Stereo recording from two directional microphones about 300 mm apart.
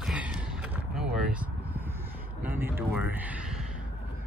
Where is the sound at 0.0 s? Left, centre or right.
Centre.